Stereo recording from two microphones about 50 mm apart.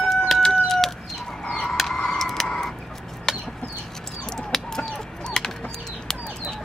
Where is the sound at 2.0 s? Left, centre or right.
Centre.